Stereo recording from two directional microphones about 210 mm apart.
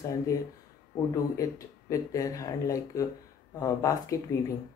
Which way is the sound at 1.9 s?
15° left (ahead or behind).